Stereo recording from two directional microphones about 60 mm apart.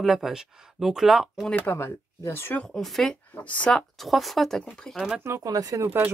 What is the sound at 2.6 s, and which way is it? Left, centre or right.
Speech, centre.